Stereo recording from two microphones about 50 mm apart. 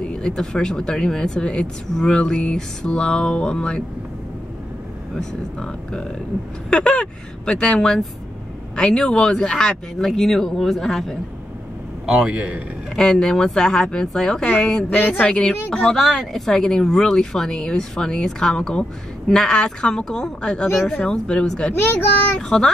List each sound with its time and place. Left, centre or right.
0.0 s speech: centre
5.1 s speech: centre
12.1 s a man's voice: centre
12.9 s speech: centre
15.0 s speech: left
15.9 s speech: centre
21.8 s a child's voice: left
22.3 s speech: centre